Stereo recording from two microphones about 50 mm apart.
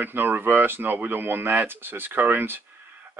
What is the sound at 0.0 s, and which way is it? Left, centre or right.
Speech, right.